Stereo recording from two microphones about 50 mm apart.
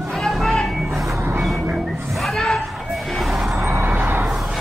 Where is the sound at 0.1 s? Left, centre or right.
Centre.